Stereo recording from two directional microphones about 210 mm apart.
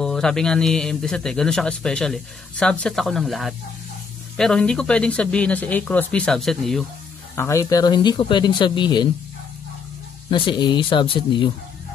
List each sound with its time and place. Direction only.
0.0 s a man's voice: 5° left (ahead or behind)
7.3 s speech: 15° left (ahead or behind)
10.3 s speech: 20° left (ahead or behind)